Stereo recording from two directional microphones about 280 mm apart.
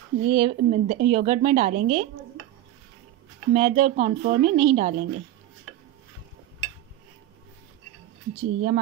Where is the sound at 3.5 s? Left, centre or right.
Right.